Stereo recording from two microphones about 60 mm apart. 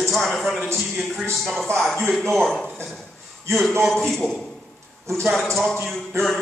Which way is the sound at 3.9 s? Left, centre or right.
Centre.